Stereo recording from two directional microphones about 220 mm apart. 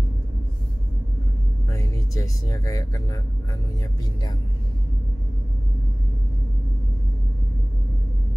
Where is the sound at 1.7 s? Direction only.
15° left (ahead or behind).